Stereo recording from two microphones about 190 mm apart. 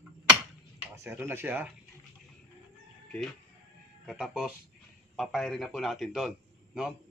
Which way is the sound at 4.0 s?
Centre (ahead or behind).